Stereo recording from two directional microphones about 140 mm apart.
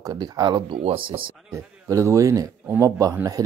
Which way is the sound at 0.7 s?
40° right (ahead or behind).